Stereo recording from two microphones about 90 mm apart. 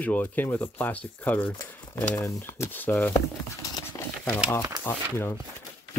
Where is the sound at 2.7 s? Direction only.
20° left (ahead or behind).